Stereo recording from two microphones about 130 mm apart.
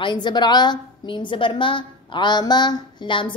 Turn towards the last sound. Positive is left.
turn(degrees=40)  # may be behind; listen again after turning